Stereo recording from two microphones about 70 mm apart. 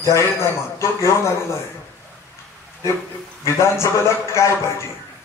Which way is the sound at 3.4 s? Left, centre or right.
Left.